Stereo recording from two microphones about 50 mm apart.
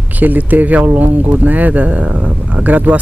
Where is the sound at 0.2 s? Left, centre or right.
Right.